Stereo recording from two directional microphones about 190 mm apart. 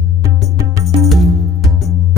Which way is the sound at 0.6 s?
15° right (ahead or behind).